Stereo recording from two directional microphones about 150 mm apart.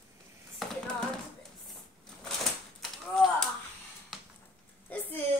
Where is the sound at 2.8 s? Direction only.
Centre (ahead or behind).